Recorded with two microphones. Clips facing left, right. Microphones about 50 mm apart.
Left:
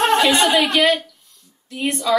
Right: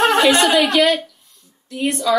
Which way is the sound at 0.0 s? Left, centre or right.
Right.